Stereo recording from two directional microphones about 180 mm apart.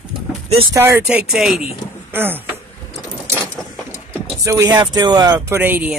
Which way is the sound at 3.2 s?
15° right (ahead or behind).